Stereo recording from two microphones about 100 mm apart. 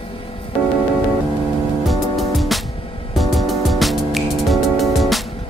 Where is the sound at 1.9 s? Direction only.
Centre (ahead or behind).